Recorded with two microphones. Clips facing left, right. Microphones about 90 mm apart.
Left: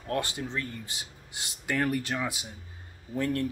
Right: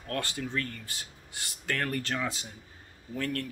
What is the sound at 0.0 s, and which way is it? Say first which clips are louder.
Speech: left 3 dB; 20° left (ahead or behind).